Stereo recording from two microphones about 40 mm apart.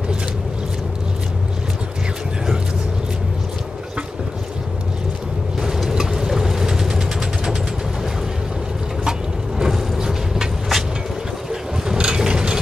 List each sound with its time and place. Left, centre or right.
5.6 s vehicle: centre
9.6 s vehicle: centre
12.0 s mechanisms: right